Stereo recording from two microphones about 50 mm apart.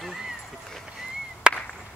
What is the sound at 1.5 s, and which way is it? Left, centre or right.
Chop, centre.